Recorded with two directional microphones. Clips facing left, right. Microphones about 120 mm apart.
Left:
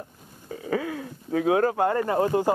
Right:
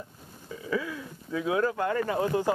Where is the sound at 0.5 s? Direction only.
60° left (ahead or behind).